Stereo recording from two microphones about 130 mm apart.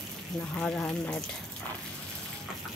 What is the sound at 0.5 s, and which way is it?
Speech, 5° left (ahead or behind).